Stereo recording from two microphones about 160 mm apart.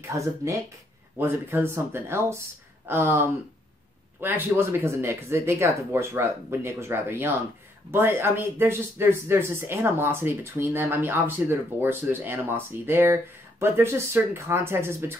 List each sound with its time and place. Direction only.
0.0 s speech: 20° right (ahead or behind)